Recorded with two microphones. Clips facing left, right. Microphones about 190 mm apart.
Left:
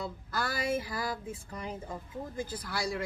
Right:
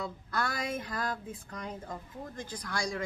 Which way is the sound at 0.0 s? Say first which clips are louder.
Right 1 dB; 5° left (ahead or behind).